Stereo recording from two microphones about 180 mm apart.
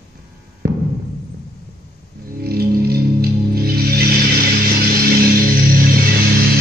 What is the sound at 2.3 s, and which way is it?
Music, 60° right (ahead or behind).